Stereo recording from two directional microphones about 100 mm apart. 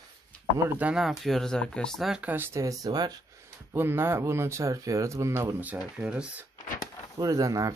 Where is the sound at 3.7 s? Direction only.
20° right (ahead or behind).